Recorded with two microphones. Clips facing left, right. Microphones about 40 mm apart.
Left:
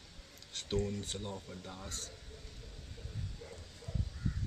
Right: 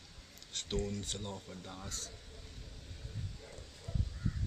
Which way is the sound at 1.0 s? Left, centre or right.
Right.